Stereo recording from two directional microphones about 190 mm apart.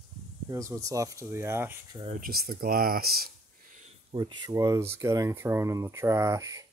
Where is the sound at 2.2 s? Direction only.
50° right (ahead or behind).